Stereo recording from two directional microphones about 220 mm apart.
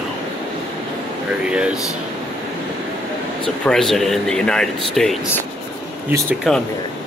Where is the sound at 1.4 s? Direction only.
5° right (ahead or behind).